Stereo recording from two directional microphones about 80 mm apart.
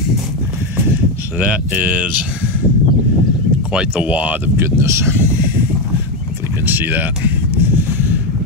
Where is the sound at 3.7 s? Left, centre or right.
Centre.